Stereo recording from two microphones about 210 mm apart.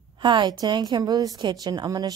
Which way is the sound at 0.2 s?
20° right (ahead or behind).